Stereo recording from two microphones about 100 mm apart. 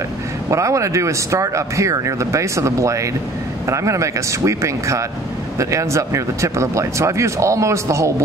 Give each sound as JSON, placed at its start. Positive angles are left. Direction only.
{"t": 0.5, "sound": "speech", "side_deg": -30}